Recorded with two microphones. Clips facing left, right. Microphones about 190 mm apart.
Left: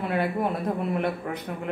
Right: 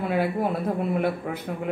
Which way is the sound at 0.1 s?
5° right (ahead or behind).